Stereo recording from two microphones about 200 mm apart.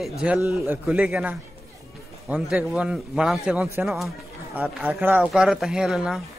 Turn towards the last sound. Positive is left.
turn(degrees=-5)  # may be behind; listen again after turning